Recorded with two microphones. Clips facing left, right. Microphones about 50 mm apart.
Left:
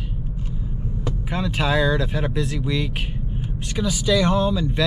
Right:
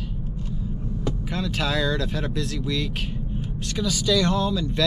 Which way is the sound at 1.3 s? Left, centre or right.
Left.